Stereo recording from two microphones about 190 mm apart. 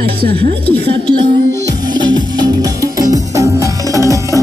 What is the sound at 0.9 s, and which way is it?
Music, 25° right (ahead or behind).